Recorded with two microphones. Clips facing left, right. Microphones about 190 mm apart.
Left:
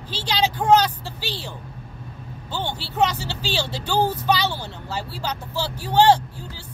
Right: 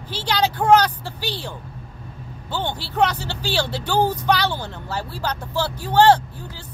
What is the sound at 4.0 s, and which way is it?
Speech, 15° right (ahead or behind).